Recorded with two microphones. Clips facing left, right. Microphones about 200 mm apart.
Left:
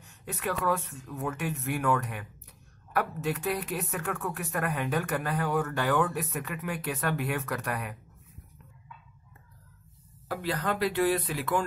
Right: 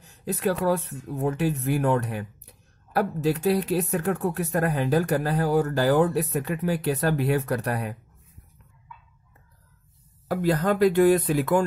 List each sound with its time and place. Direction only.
0.0 s speech: 35° right (ahead or behind)
10.2 s speech: 45° right (ahead or behind)